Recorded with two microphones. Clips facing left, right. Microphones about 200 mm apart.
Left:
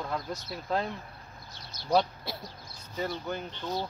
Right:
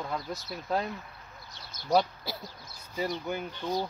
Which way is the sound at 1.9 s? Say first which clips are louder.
Even; centre (ahead or behind).